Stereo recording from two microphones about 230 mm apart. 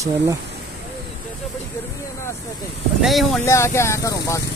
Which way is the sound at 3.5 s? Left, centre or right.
Centre.